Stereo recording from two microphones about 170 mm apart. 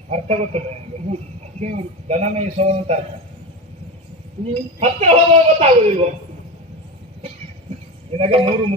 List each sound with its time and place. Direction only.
0.1 s speech: 40° right (ahead or behind)
4.7 s speech: 40° right (ahead or behind)
8.1 s speech: 35° right (ahead or behind)